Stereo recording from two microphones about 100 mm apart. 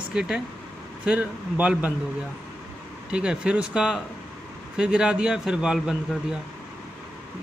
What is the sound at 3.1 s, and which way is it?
Speech, 10° right (ahead or behind).